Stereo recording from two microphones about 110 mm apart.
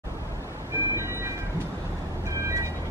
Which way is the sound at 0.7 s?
25° right (ahead or behind).